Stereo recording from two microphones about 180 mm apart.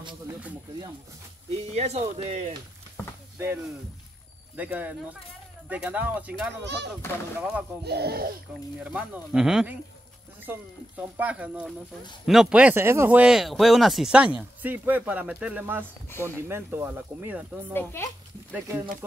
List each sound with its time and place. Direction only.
1.5 s speech: 35° right (ahead or behind)
4.6 s speech: 10° right (ahead or behind)
6.6 s speech: 75° right (ahead or behind)
7.8 s speech: 65° right (ahead or behind)
8.8 s speech: 5° right (ahead or behind)
17.7 s speech: 15° left (ahead or behind)
18.5 s speech: 15° right (ahead or behind)